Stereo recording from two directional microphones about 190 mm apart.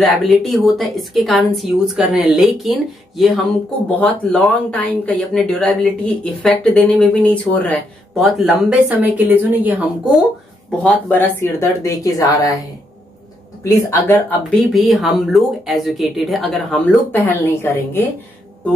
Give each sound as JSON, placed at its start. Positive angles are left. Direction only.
{"t": 0.0, "sound": "a woman's voice", "side_deg": 0}
{"t": 10.8, "sound": "speech", "side_deg": 5}
{"t": 13.7, "sound": "speech", "side_deg": 15}
{"t": 14.5, "sound": "a woman's voice", "side_deg": 0}